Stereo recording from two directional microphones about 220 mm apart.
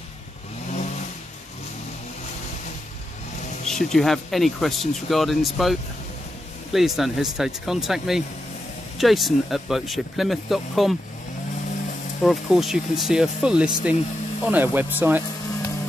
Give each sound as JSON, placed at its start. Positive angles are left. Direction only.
{"t": 3.6, "sound": "speech", "side_deg": 0}
{"t": 12.2, "sound": "speech", "side_deg": 0}